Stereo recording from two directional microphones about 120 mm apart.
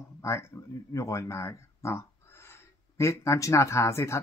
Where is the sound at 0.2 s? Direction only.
25° left (ahead or behind).